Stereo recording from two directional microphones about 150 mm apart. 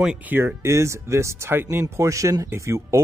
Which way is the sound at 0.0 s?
10° right (ahead or behind).